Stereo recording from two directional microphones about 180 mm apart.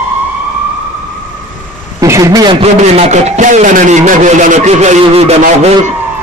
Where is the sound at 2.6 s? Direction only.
35° right (ahead or behind).